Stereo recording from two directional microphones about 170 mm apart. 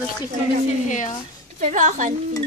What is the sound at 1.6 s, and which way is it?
Speech, 45° right (ahead or behind).